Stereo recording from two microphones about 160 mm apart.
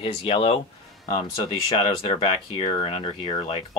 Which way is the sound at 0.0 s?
35° left (ahead or behind).